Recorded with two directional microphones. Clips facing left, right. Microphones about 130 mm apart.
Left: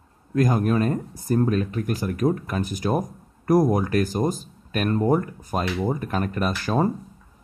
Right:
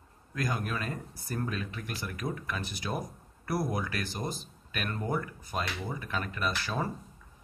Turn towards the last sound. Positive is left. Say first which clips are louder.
# left 10 dB
turn(degrees=45)  # may be behind; listen again after turning